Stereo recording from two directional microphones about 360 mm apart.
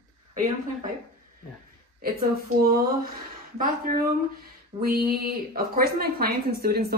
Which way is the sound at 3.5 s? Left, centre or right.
Right.